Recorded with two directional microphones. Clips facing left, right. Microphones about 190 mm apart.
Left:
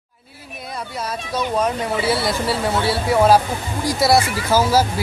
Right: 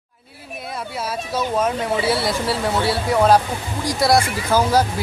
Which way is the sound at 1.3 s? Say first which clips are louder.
Even; centre (ahead or behind).